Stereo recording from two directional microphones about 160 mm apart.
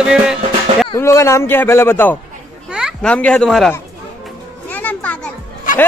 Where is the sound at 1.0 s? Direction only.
15° left (ahead or behind).